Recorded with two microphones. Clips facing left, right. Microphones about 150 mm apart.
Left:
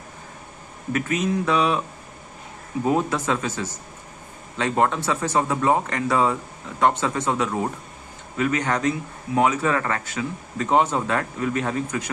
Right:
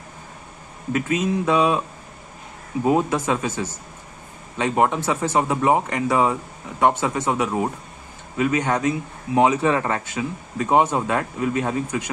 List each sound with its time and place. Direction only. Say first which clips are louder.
0.9 s a man's voice: right 1 dB; 15° right (ahead or behind)
2.8 s a man's voice: right 2 dB; 15° right (ahead or behind)